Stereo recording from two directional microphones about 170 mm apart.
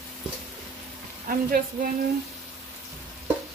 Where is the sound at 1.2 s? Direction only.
55° right (ahead or behind).